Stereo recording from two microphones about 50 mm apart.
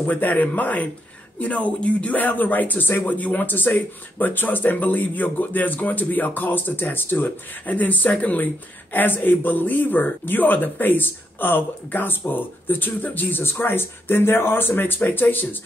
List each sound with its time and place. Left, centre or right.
0.0 s speech: left
2.9 s speech: left
8.9 s speech: left